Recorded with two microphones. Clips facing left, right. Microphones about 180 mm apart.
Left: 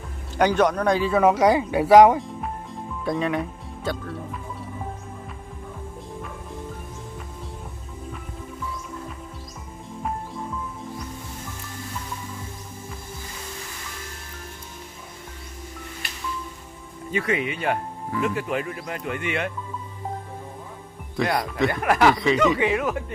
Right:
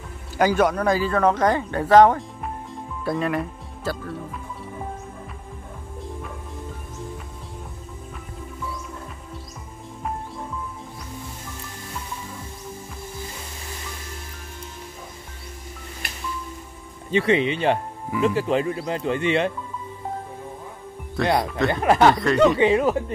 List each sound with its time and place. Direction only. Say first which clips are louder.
0.4 s speech: even; 5° right (ahead or behind)
2.4 s music: even; centre (ahead or behind)
17.1 s speech: right 5 dB; 30° right (ahead or behind)
21.2 s speech: right 2 dB; centre (ahead or behind)
21.6 s speech: right 2 dB; 25° right (ahead or behind)
22.1 s speech: even; centre (ahead or behind)
22.6 s speech: right 5 dB; 30° right (ahead or behind)